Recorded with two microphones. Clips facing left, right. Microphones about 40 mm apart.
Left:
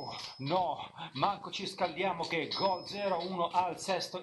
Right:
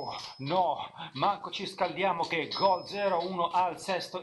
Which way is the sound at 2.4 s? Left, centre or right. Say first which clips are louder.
Right 5 dB; centre.